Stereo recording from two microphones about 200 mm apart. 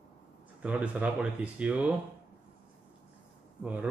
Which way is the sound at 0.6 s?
5° right (ahead or behind).